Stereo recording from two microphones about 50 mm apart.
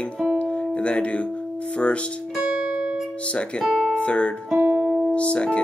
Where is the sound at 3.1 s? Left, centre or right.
Left.